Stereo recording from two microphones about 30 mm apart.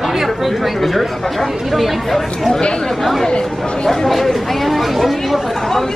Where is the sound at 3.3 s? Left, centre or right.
Left.